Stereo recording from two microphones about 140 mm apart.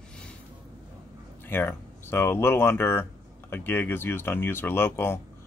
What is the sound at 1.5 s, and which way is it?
A man's voice, 15° left (ahead or behind).